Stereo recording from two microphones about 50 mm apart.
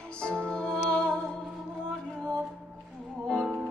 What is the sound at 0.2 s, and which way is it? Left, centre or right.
Music, centre.